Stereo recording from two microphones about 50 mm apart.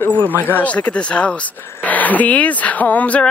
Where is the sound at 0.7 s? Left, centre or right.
Left.